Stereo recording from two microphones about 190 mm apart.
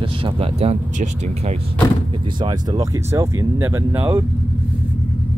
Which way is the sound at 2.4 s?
20° right (ahead or behind).